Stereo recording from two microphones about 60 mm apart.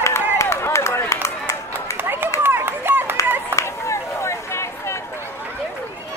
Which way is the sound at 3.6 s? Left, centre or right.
Left.